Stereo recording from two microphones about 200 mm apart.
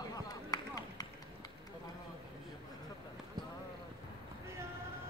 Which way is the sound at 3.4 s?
20° right (ahead or behind).